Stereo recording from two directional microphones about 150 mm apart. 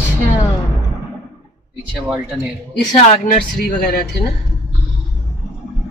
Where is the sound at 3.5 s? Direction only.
90° left.